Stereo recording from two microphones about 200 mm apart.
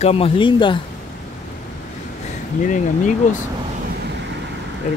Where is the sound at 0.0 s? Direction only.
30° left (ahead or behind).